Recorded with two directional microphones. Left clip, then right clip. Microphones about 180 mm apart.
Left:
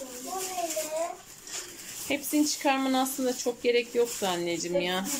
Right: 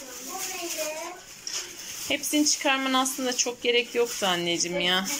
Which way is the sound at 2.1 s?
15° left (ahead or behind).